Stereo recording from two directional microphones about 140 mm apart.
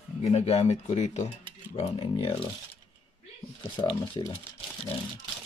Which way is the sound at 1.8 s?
40° left (ahead or behind).